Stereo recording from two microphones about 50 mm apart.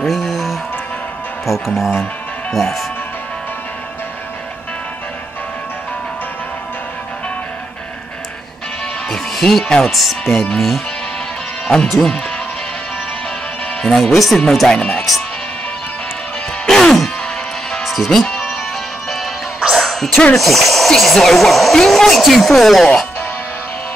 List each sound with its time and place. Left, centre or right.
0.0 s music: centre
1.4 s speech: centre
9.1 s music: centre
9.7 s speech: centre
13.8 s speech: centre
14.7 s speech: centre
16.6 s music: centre
17.8 s music: centre
18.2 s music: centre
20.3 s speech: centre